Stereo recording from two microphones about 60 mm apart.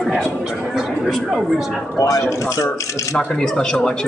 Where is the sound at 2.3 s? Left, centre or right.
Left.